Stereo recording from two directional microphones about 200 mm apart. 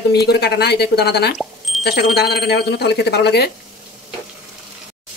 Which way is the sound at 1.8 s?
55° left (ahead or behind).